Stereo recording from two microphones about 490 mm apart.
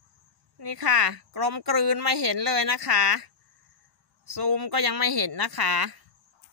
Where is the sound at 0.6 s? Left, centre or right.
Right.